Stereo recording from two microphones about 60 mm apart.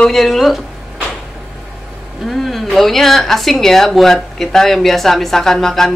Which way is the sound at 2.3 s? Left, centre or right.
Centre.